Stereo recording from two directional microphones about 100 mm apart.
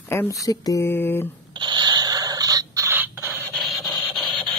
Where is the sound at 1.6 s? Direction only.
45° right (ahead or behind).